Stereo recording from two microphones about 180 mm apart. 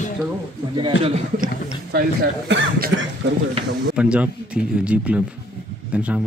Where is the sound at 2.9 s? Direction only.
90° right.